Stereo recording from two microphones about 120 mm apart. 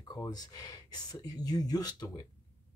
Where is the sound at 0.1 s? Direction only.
35° left (ahead or behind).